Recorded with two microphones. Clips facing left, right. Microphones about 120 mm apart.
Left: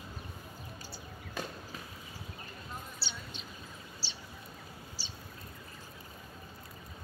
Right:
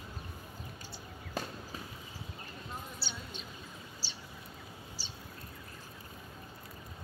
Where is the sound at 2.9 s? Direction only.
45° right (ahead or behind).